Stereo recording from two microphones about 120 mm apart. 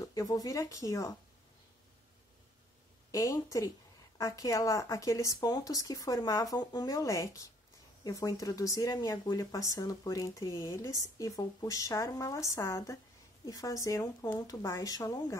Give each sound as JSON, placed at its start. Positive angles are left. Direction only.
{"t": 0.0, "sound": "speech", "side_deg": 30}
{"t": 3.1, "sound": "speech", "side_deg": 30}